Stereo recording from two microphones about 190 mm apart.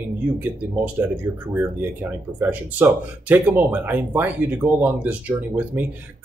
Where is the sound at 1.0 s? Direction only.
10° right (ahead or behind).